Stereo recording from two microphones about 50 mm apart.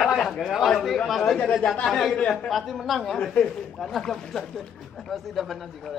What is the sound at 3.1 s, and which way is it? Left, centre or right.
Speech, centre.